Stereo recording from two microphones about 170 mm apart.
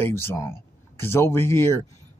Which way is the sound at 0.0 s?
15° left (ahead or behind).